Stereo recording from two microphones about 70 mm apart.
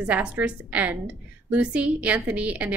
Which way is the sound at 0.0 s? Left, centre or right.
Right.